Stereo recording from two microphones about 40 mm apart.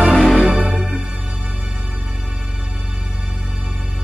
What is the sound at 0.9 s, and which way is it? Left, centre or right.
Music, right.